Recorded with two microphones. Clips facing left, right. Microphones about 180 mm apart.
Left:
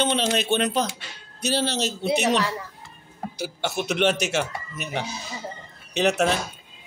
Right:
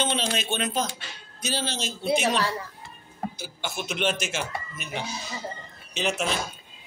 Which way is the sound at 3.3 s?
65° left (ahead or behind).